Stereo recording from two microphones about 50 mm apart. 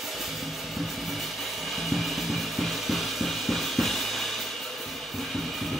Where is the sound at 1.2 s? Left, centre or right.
Centre.